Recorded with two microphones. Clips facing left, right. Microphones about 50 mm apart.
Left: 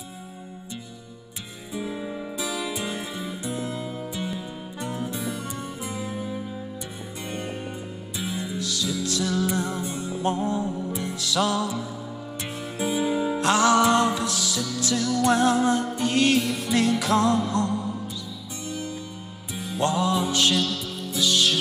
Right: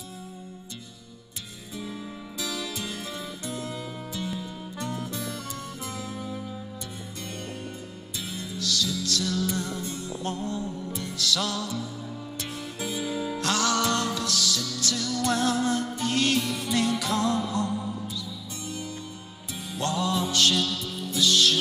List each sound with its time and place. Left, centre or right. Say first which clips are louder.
1.8 s music: left 6 dB; centre
8.2 s music: left 5 dB; centre
19.5 s music: left 5 dB; centre
20.6 s music: left 2 dB; centre